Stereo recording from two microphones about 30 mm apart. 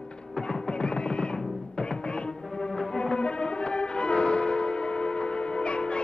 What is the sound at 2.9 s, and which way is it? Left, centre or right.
Music, left.